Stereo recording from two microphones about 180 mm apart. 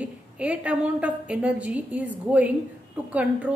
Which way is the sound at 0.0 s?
10° right (ahead or behind).